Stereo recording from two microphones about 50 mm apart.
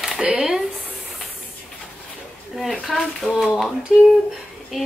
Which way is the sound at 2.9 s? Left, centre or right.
Centre.